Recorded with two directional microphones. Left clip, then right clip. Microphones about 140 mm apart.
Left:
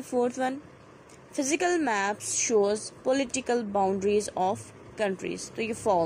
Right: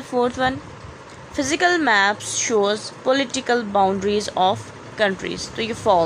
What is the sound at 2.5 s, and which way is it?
Speech, 5° left (ahead or behind).